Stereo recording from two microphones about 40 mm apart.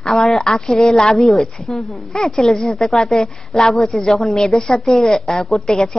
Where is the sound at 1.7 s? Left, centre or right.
Centre.